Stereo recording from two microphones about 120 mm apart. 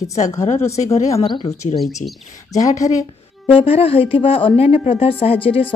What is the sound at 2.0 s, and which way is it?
Speech, 85° left.